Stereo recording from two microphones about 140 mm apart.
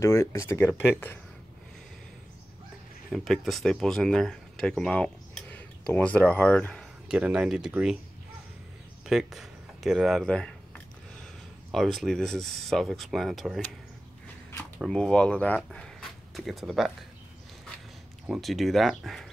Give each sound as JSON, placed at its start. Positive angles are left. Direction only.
{"t": 0.0, "sound": "speech", "side_deg": 20}
{"t": 3.1, "sound": "speech", "side_deg": 0}
{"t": 7.1, "sound": "speech", "side_deg": -5}
{"t": 9.0, "sound": "speech", "side_deg": 0}
{"t": 11.7, "sound": "speech", "side_deg": 0}
{"t": 14.8, "sound": "speech", "side_deg": 5}
{"t": 18.2, "sound": "speech", "side_deg": 0}